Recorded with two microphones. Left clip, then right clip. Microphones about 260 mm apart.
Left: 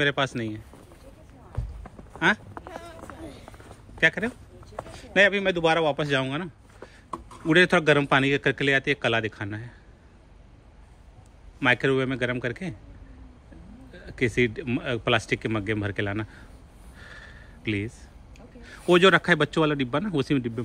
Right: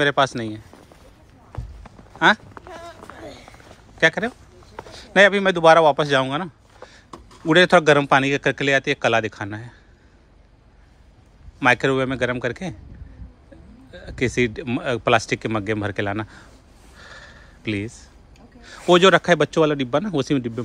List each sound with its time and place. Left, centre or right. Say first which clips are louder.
0.0 s speech: right 6 dB; centre
2.1 s speech: right 7 dB; centre
2.7 s a sound: right 6 dB; right
4.0 s speech: right 4 dB; centre
11.6 s speech: right 5 dB; centre
13.9 s speech: right 3 dB; centre
16.9 s a sound: right 3 dB; centre
18.6 s speech: right 4 dB; centre